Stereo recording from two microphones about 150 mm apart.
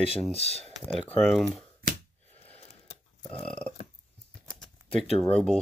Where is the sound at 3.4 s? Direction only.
10° left (ahead or behind).